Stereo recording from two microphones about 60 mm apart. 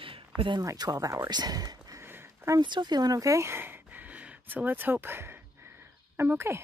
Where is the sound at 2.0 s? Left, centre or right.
Right.